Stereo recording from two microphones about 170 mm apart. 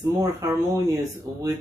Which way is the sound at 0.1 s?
20° right (ahead or behind).